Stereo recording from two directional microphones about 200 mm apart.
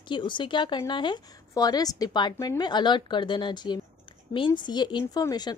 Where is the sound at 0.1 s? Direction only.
25° left (ahead or behind).